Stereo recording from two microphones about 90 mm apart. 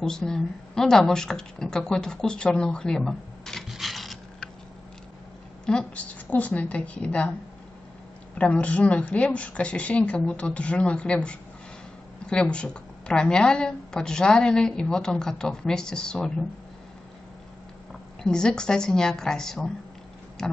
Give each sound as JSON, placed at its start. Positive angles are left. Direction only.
{"t": 0.0, "sound": "speech", "side_deg": 5}
{"t": 5.7, "sound": "a woman's voice", "side_deg": 10}
{"t": 8.4, "sound": "a woman's voice", "side_deg": 15}
{"t": 18.2, "sound": "a woman's voice", "side_deg": 10}